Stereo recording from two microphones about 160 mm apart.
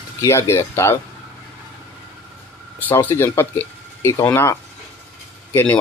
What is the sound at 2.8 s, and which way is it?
Speech, 15° left (ahead or behind).